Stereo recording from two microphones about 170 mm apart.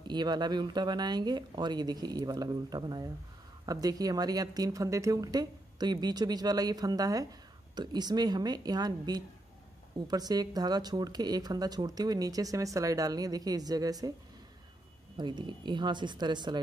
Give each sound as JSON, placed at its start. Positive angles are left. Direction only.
{"t": 0.0, "sound": "speech", "side_deg": -25}
{"t": 15.1, "sound": "speech", "side_deg": -25}